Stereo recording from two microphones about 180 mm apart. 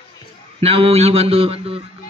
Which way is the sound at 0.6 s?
35° right (ahead or behind).